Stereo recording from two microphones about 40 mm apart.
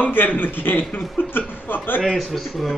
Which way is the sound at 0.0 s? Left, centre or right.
Left.